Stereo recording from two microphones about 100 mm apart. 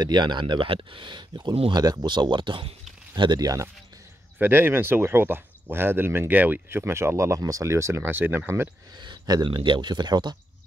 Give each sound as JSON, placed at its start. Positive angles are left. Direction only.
{"t": 0.0, "sound": "speech", "side_deg": -50}
{"t": 3.2, "sound": "speech", "side_deg": -40}
{"t": 4.4, "sound": "speech", "side_deg": -20}
{"t": 8.9, "sound": "speech", "side_deg": -45}